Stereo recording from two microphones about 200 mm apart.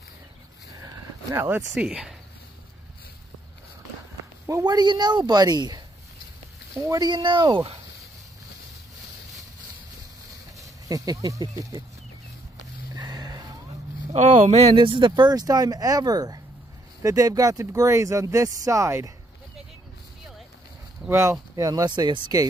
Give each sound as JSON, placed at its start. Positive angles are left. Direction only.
{"t": 0.7, "sound": "a sound", "side_deg": -15}
{"t": 1.7, "sound": "speech", "side_deg": -5}
{"t": 4.5, "sound": "speech", "side_deg": -20}
{"t": 6.8, "sound": "speech", "side_deg": -20}
{"t": 10.6, "sound": "speech", "side_deg": -15}
{"t": 12.9, "sound": "a sound", "side_deg": -20}
{"t": 14.1, "sound": "speech", "side_deg": -35}
{"t": 21.0, "sound": "speech", "side_deg": -15}